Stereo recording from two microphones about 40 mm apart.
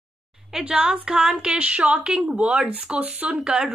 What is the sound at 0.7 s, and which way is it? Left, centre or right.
Speech, right.